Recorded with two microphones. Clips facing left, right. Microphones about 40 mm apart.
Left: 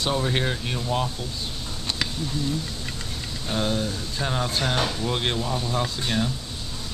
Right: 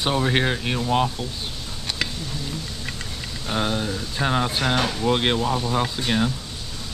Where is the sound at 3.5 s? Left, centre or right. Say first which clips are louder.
Right 1 dB; right.